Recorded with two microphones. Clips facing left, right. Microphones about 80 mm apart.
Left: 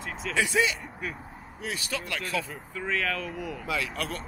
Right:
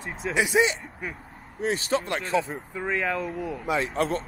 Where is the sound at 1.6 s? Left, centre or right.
Right.